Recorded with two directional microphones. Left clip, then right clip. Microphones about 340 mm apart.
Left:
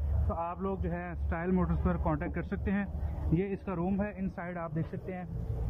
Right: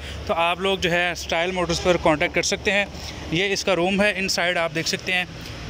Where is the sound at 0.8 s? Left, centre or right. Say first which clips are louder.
Right 18 dB; centre.